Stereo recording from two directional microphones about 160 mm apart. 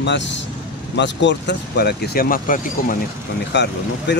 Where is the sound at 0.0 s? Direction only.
90° left; by 3.0 s 60° left (ahead or behind).